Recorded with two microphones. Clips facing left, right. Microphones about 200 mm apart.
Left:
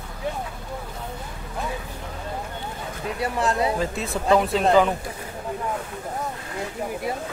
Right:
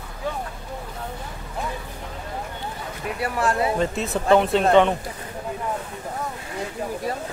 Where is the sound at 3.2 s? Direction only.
20° left (ahead or behind).